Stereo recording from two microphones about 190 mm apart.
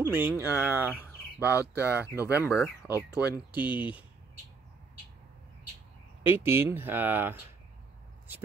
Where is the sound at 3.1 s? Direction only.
20° left (ahead or behind).